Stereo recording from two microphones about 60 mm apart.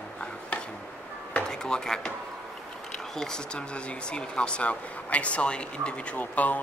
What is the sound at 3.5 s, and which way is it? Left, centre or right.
Speech, centre.